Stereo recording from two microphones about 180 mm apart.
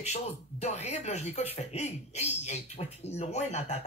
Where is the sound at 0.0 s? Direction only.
35° left (ahead or behind).